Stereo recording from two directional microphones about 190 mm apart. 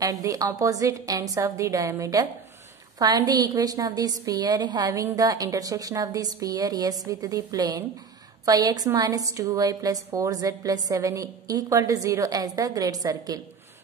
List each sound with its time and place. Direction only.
0.0 s a woman's voice: 20° right (ahead or behind)